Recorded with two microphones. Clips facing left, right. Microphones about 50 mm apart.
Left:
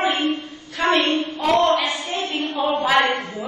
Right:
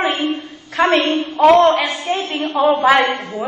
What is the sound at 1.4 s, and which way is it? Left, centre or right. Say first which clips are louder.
Speech: right 8 dB; right.